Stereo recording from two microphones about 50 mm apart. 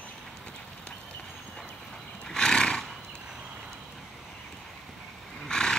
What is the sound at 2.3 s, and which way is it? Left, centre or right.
Horse, centre.